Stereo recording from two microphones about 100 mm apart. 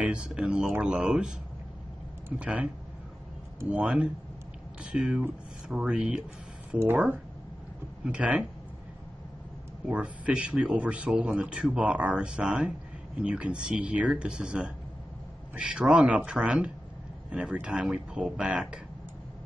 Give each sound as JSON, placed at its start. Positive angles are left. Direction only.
{"t": 0.0, "sound": "a man's voice", "side_deg": -10}
{"t": 3.7, "sound": "a man's voice", "side_deg": -10}
{"t": 8.0, "sound": "a man's voice", "side_deg": -15}
{"t": 9.8, "sound": "a man's voice", "side_deg": -15}